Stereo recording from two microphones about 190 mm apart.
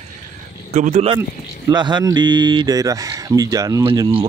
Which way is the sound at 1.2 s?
20° right (ahead or behind).